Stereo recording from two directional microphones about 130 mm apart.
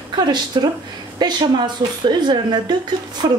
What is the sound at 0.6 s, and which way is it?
A woman's voice, 30° right (ahead or behind).